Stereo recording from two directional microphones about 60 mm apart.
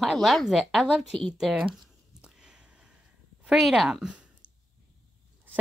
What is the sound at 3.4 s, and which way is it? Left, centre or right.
Speech, centre.